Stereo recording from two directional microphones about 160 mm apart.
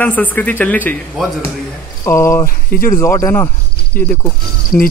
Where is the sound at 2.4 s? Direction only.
60° left (ahead or behind).